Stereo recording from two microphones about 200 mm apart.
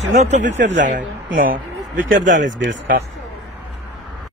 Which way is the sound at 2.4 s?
65° right (ahead or behind).